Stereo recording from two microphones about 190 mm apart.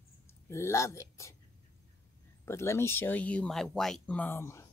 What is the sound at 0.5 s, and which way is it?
Speech, 15° left (ahead or behind).